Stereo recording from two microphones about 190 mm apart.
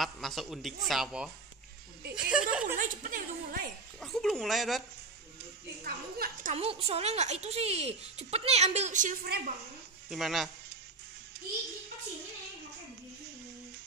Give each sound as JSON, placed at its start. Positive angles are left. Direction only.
{"t": 0.0, "sound": "speech", "side_deg": 0}
{"t": 2.6, "sound": "speech", "side_deg": -45}
{"t": 4.0, "sound": "speech", "side_deg": 5}
{"t": 5.9, "sound": "speech", "side_deg": -50}
{"t": 6.5, "sound": "speech", "side_deg": -30}
{"t": 10.0, "sound": "speech", "side_deg": 0}